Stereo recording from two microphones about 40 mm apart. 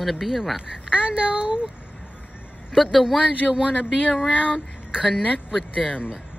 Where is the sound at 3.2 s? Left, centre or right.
Right.